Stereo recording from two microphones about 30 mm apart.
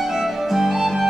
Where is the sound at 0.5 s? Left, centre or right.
Centre.